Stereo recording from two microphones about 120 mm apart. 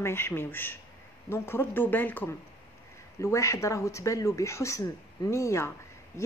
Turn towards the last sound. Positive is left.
turn(degrees=25)  # may be behind; listen again after turning